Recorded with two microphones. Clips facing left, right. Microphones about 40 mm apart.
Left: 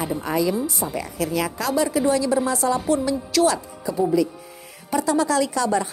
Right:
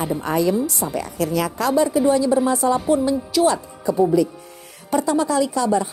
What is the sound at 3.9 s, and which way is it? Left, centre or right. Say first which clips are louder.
A woman's voice: right 3 dB; right.